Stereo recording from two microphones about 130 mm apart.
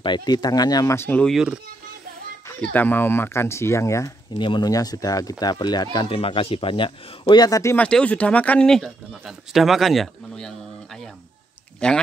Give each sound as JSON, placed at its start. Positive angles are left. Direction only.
{"t": 0.0, "sound": "speech", "side_deg": 35}
{"t": 0.9, "sound": "speech", "side_deg": 15}
{"t": 1.2, "sound": "speech", "side_deg": -5}
{"t": 2.7, "sound": "speech", "side_deg": 15}
{"t": 4.4, "sound": "speech", "side_deg": 35}
{"t": 5.9, "sound": "speech", "side_deg": 45}
{"t": 7.7, "sound": "speech", "side_deg": 10}